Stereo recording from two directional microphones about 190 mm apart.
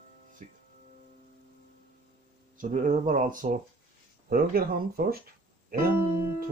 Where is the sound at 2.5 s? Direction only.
40° right (ahead or behind).